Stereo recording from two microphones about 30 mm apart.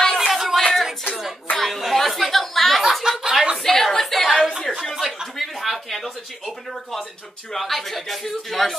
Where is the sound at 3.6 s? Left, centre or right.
Centre.